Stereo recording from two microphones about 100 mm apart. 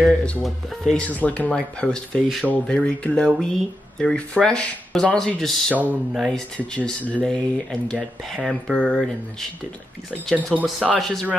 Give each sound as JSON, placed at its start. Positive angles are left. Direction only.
{"t": 0.0, "sound": "speech", "side_deg": 5}
{"t": 5.7, "sound": "speech", "side_deg": -15}
{"t": 6.1, "sound": "speech", "side_deg": 0}
{"t": 6.5, "sound": "speech", "side_deg": 10}
{"t": 10.3, "sound": "speech", "side_deg": -10}